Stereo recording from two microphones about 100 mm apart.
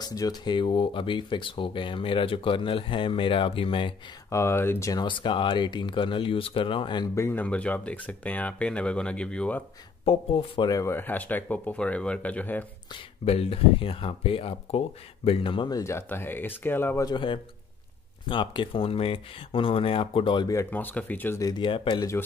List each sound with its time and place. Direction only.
0.0 s speech: 40° left (ahead or behind)
0.6 s speech: 60° left (ahead or behind)
4.3 s speech: 25° left (ahead or behind)
5.0 s speech: 55° left (ahead or behind)
7.2 s speech: 20° left (ahead or behind)
10.0 s speech: 65° left (ahead or behind)
10.7 s speech: 30° left (ahead or behind)
11.0 s speech: 15° left (ahead or behind)
13.2 s speech: 85° left; by 15.7 s 55° left (ahead or behind)
15.7 s speech: 30° left (ahead or behind)
17.0 s speech: 50° left (ahead or behind)
20.7 s speech: 15° left (ahead or behind)
21.4 s speech: 40° left (ahead or behind)
21.6 s speech: 55° left (ahead or behind)